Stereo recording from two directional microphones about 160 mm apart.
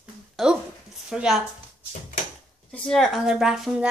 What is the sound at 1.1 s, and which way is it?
Speech, 5° right (ahead or behind).